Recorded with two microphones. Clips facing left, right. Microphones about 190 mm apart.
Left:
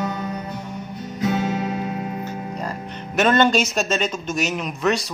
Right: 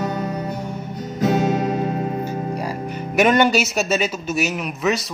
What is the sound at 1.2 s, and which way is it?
Music, 45° right (ahead or behind).